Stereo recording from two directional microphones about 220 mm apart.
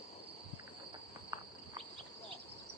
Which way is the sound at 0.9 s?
20° right (ahead or behind).